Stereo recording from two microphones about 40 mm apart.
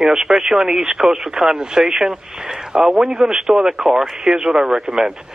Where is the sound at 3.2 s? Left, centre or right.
Centre.